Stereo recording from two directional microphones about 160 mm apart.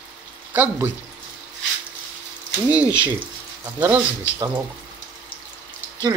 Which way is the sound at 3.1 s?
15° right (ahead or behind).